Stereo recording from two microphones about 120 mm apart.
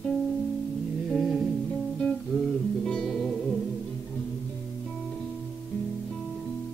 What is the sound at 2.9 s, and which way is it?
Music, 5° left (ahead or behind).